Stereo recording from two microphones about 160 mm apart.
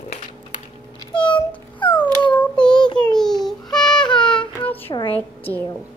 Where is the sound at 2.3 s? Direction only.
5° left (ahead or behind).